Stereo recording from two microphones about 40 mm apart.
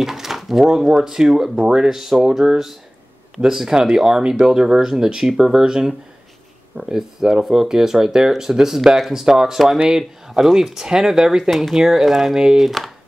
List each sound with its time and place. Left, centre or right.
0.0 s drawer open or close: centre
0.7 s speech: centre